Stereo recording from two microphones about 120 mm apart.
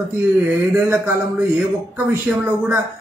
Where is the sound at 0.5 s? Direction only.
20° right (ahead or behind).